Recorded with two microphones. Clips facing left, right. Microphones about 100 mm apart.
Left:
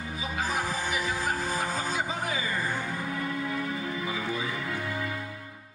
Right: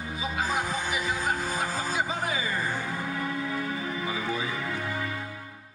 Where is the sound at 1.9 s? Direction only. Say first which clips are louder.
Right 1 dB; 35° right (ahead or behind).